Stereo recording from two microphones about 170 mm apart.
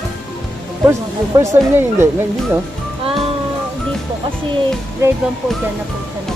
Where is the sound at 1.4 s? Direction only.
15° right (ahead or behind).